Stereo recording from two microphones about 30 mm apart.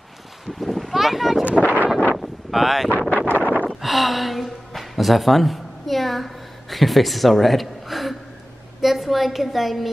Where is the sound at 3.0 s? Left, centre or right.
Left.